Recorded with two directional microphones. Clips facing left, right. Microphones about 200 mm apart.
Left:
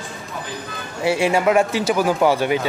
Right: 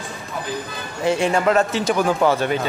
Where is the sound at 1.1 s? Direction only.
10° left (ahead or behind).